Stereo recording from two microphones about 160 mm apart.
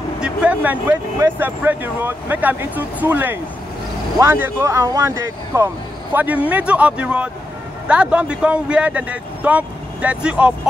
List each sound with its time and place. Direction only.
0.2 s speech: 5° right (ahead or behind)